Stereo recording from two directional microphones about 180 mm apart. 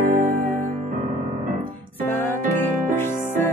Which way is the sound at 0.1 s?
40° right (ahead or behind).